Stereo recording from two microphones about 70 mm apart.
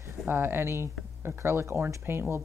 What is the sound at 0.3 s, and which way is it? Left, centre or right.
Speech, right.